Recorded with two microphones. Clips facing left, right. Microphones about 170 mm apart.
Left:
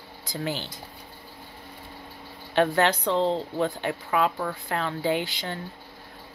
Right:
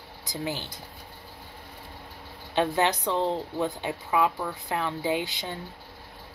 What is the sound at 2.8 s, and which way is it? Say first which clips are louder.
A woman's voice: left 3 dB; 15° right (ahead or behind).